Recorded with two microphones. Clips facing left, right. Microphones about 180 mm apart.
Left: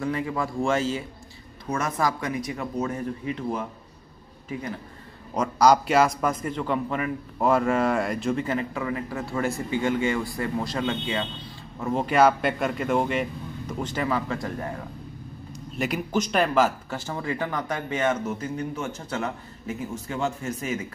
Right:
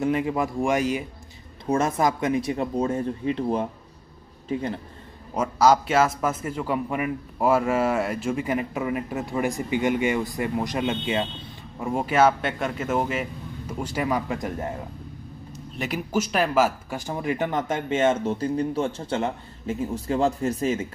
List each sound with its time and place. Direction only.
0.0 s a man's voice: 20° right (ahead or behind)
1.7 s speech: 25° right (ahead or behind)
5.3 s a man's voice: 5° right (ahead or behind); by 11.2 s 20° right (ahead or behind)
11.8 s speech: 10° right (ahead or behind)
15.7 s speech: centre (ahead or behind); by 20.8 s 35° right (ahead or behind)